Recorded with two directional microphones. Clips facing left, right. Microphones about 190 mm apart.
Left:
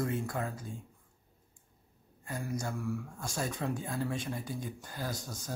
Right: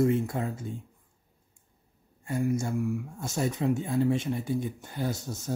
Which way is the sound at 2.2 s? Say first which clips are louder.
Right 9 dB; 25° right (ahead or behind).